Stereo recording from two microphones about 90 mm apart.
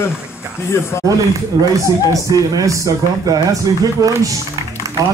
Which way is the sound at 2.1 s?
40° right (ahead or behind).